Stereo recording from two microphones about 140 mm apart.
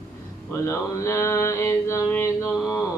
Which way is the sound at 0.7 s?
20° left (ahead or behind).